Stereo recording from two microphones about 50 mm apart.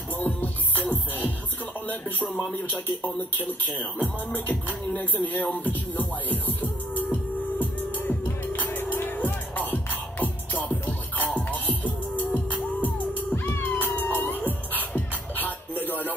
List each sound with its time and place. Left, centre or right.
0.2 s music: left
1.9 s speech: left
4.9 s music: left